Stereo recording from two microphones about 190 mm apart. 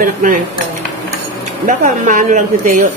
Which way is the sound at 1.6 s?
40° right (ahead or behind).